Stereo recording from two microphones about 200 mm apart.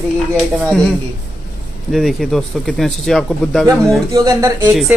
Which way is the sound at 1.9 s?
Centre (ahead or behind).